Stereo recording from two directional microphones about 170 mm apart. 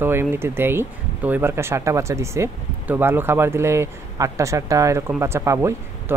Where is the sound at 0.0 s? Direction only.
15° right (ahead or behind).